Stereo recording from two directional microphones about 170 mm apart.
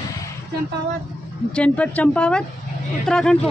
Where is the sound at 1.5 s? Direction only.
5° left (ahead or behind).